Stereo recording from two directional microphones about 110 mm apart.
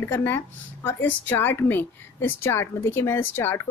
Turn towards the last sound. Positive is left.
turn(degrees=20)  # may be behind; listen again after turning